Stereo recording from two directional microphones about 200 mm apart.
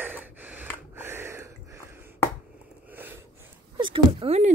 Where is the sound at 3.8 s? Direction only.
25° right (ahead or behind).